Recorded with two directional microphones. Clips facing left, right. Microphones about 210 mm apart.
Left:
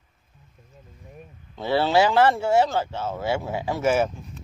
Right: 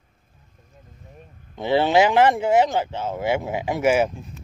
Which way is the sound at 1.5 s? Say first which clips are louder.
Right 2 dB; 15° right (ahead or behind).